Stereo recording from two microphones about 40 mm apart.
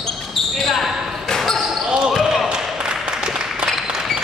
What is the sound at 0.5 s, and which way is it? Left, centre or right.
Basketball bounce, centre.